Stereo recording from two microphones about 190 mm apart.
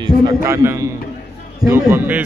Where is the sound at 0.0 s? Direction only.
15° right (ahead or behind).